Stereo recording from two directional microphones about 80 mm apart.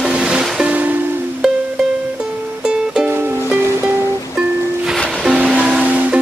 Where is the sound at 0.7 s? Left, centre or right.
Right.